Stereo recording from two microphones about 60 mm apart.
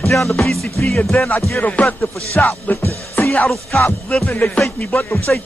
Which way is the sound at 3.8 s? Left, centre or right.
Left.